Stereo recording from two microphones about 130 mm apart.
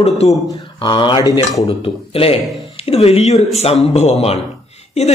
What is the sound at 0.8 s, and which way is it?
Speech, 40° left (ahead or behind).